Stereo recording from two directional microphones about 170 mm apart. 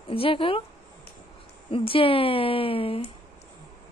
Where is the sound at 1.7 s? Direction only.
30° left (ahead or behind).